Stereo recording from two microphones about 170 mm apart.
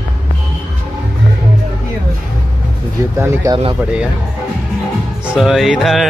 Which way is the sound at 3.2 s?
15° right (ahead or behind).